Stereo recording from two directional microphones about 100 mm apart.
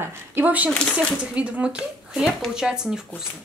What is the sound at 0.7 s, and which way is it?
Speech, 10° left (ahead or behind).